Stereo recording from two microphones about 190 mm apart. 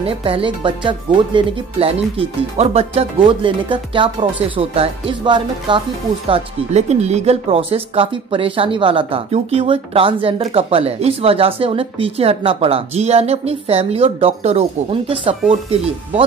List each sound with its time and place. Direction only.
0.0 s speech: 30° right (ahead or behind)